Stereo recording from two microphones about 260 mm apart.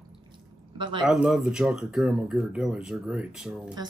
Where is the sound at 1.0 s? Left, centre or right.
Centre.